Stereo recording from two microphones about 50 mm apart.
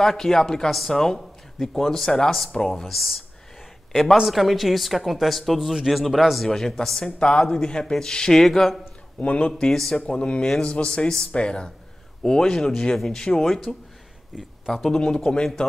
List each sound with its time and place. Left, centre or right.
0.0 s speech: centre
9.2 s speech: left
9.6 s speech: centre
10.1 s speech: centre
14.3 s speech: centre
14.7 s speech: centre